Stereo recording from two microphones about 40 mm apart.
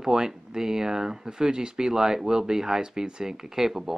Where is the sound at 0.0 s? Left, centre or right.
Centre.